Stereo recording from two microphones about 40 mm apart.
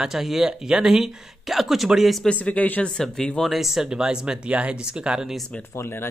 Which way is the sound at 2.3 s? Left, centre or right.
Left.